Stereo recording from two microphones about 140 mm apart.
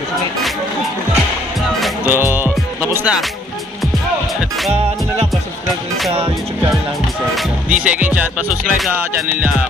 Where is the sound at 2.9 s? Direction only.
5° right (ahead or behind).